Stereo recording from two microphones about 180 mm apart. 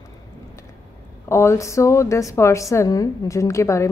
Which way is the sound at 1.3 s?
15° left (ahead or behind).